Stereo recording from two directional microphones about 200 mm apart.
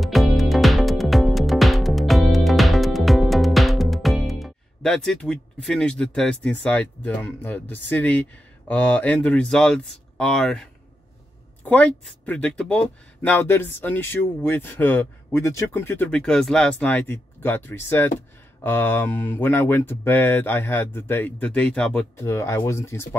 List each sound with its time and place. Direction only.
0.0 s music: centre (ahead or behind)
6.4 s speech: 5° left (ahead or behind)